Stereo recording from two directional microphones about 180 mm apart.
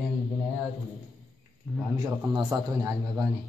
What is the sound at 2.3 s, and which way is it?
Speech, 20° right (ahead or behind).